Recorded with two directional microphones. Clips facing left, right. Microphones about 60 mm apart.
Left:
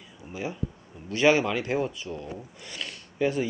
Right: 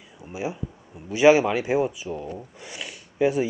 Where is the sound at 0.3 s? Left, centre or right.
Centre.